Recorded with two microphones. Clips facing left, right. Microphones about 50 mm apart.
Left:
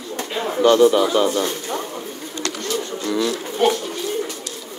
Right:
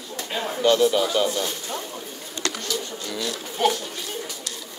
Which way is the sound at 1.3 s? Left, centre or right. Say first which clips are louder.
Left 5 dB; left.